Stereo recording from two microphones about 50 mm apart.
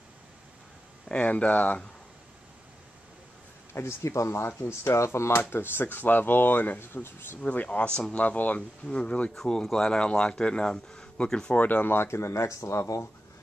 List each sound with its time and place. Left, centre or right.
1.0 s speech: left
3.7 s speech: left
5.4 s speech: left
6.8 s speech: left
7.4 s speech: left
9.3 s speech: centre
11.5 s speech: left
11.9 s speech: left